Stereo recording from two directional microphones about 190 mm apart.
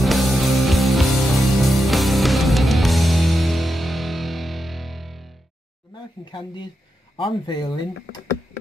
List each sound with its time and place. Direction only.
0.0 s music: centre (ahead or behind)
6.3 s speech: 25° left (ahead or behind)